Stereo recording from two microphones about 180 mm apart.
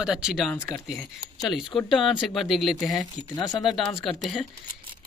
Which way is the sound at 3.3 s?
20° left (ahead or behind).